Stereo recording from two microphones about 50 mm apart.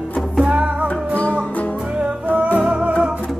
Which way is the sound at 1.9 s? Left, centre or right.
Right.